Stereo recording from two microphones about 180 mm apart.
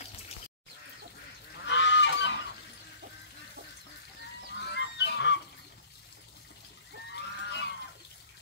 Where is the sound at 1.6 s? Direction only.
80° left.